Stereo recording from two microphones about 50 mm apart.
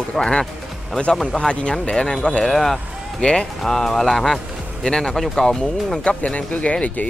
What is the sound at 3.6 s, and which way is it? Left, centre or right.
Speech, centre.